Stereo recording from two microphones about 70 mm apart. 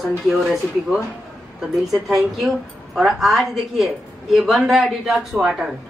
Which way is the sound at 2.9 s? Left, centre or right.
Centre.